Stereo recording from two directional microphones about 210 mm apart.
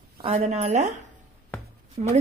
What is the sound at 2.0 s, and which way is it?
Speech, 35° right (ahead or behind).